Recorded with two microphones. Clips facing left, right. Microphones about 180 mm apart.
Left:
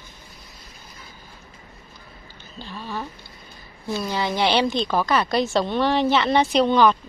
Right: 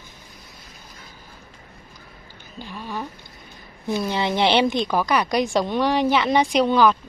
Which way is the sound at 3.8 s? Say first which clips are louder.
Right 2 dB; 20° right (ahead or behind).